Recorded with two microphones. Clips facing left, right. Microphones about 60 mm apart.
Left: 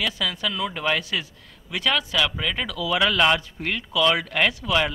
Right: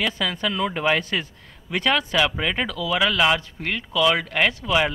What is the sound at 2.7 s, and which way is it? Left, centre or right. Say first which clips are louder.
Speech: left 3 dB; centre.